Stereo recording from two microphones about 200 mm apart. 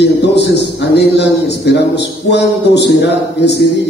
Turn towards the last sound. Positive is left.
turn(degrees=60)  # may be behind; listen again after turning